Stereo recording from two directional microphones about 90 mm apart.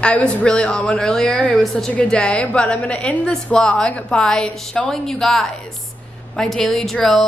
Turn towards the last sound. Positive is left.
turn(degrees=5)  # may be behind; listen again after turning